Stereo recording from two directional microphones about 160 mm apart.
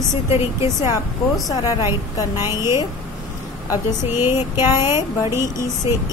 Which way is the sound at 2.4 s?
15° right (ahead or behind).